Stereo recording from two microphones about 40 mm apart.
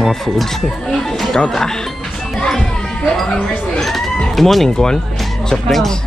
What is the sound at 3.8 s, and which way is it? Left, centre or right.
Speech, centre.